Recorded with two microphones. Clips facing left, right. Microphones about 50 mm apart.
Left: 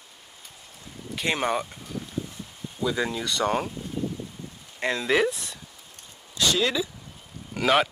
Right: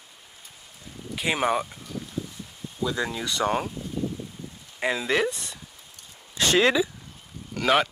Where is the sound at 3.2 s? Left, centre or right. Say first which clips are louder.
Even; centre.